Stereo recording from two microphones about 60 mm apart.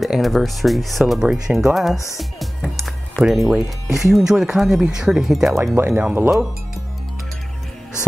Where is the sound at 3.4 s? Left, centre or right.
Centre.